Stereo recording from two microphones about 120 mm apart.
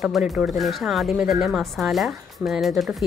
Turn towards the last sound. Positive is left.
turn(degrees=0)  # may be behind; listen again after turning